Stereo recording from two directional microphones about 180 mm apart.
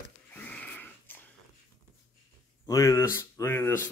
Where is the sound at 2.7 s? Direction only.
15° left (ahead or behind).